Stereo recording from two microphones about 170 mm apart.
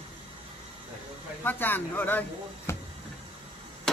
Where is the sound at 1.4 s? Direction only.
10° left (ahead or behind).